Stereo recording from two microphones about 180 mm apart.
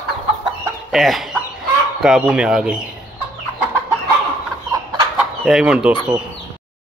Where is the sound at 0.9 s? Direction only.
Centre (ahead or behind).